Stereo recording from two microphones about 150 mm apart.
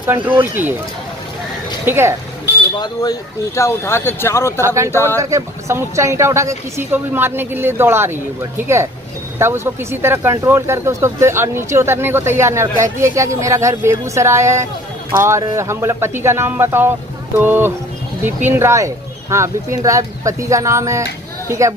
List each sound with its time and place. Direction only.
0.3 s speech: 10° right (ahead or behind)
1.9 s speech: 15° right (ahead or behind)
2.8 s speech: 25° left (ahead or behind)
4.6 s speech: 20° right (ahead or behind)